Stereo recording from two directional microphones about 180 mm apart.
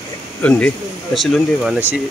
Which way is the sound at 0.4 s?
5° left (ahead or behind).